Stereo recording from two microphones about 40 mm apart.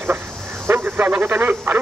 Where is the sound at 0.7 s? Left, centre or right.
Right.